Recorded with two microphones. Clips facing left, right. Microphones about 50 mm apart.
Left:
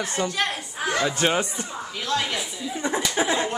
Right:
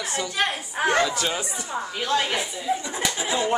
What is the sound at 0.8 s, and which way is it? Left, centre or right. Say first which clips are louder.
Speech: right 5 dB; right.